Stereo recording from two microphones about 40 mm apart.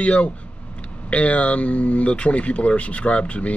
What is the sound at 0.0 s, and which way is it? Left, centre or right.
A man's voice, left.